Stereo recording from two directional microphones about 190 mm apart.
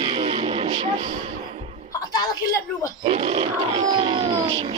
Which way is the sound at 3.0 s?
30° right (ahead or behind).